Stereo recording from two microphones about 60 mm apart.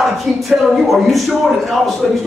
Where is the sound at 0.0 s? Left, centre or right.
Centre.